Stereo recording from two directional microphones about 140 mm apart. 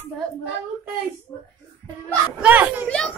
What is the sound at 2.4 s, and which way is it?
Children playing, 10° right (ahead or behind).